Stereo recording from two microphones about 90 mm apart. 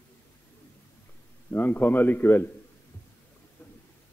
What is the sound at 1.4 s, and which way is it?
A man's voice, 20° left (ahead or behind).